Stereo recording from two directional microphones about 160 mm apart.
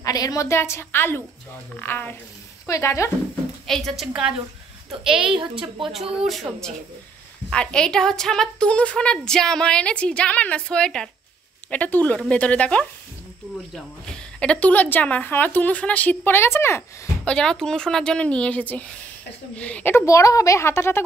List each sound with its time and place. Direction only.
0.0 s a woman's voice: 25° left (ahead or behind)
3.6 s a woman's voice: centre (ahead or behind)
5.0 s a woman's voice: 30° right (ahead or behind)
5.9 s a woman's voice: centre (ahead or behind); by 17.3 s 15° left (ahead or behind)
17.3 s a woman's voice: 5° left (ahead or behind)